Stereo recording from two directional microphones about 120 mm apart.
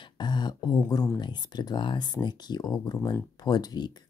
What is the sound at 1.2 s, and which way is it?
Speech, 40° left (ahead or behind).